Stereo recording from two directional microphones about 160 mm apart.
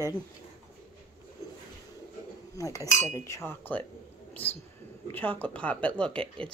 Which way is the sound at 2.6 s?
20° left (ahead or behind).